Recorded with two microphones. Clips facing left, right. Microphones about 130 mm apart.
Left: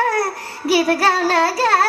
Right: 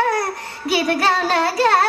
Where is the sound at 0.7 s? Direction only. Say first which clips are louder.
Left 2 dB; 25° right (ahead or behind).